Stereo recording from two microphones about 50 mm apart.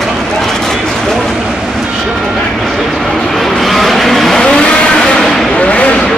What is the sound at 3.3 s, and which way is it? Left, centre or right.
Vehicle, centre.